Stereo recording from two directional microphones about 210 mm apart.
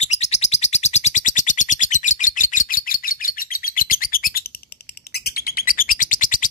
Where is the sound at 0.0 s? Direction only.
35° left (ahead or behind).